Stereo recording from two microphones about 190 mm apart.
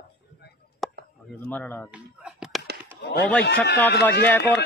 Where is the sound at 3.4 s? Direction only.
60° left (ahead or behind).